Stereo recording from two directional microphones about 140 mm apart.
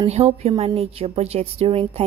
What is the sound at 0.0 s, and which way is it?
Speech, 50° right (ahead or behind).